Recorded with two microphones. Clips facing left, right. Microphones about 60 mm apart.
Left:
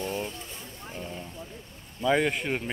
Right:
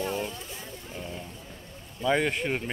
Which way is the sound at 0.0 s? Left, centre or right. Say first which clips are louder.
Right 1 dB; right.